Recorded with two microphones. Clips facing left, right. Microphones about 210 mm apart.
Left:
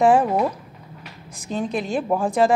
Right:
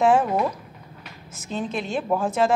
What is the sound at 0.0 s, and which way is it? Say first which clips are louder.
Speech: left 2 dB; centre (ahead or behind).